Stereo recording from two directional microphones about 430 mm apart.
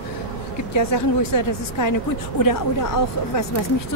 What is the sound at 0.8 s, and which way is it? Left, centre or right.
A woman's voice, left.